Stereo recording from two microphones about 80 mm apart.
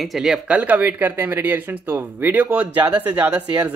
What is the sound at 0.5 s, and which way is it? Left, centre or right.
Speech, right.